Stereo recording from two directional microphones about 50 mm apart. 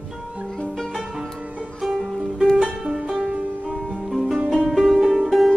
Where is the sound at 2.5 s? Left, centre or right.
Centre.